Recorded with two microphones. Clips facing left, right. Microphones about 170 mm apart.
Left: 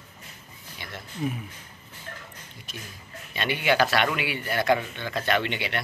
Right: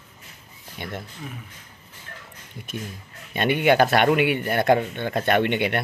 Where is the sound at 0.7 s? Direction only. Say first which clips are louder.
Right 8 dB; 55° right (ahead or behind).